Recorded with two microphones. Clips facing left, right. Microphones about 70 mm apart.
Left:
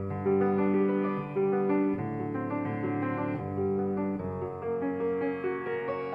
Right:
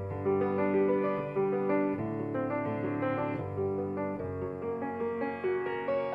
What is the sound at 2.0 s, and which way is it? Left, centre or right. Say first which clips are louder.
Music: even; left.